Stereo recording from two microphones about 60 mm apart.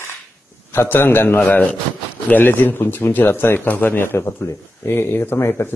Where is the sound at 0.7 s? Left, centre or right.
Left.